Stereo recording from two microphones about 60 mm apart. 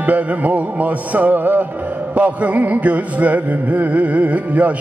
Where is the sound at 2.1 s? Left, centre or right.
Right.